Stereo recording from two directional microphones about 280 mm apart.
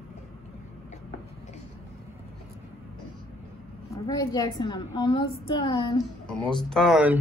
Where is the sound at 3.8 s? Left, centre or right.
Centre.